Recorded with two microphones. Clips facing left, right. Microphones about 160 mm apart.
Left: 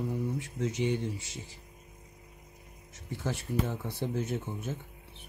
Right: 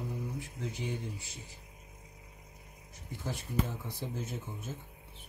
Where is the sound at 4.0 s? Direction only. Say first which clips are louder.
Left 8 dB; 70° left (ahead or behind).